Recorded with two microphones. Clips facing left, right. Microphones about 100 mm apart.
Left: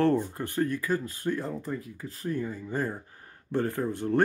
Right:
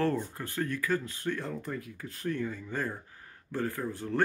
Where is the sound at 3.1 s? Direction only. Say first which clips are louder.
Left 1 dB; 35° left (ahead or behind).